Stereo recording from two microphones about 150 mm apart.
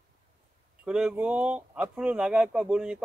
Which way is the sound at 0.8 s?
5° right (ahead or behind).